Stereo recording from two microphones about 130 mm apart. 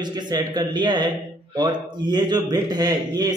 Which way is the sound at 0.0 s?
35° right (ahead or behind).